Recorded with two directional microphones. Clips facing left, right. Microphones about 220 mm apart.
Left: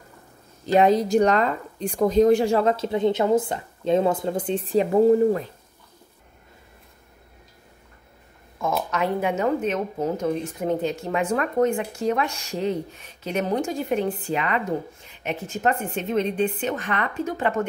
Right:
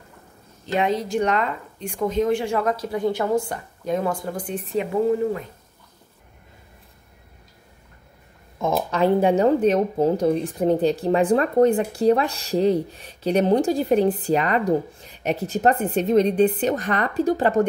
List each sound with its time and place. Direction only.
0.7 s speech: 40° left (ahead or behind)
5.0 s speech: 35° left (ahead or behind)
8.7 s speech: 30° right (ahead or behind)